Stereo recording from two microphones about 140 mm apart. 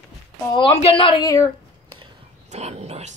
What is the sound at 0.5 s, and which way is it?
Speech, 40° left (ahead or behind).